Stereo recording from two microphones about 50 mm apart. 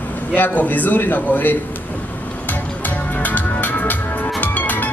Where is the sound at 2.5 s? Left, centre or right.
Left.